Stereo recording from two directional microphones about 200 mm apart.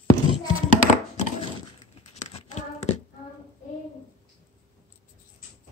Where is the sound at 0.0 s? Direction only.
20° left (ahead or behind).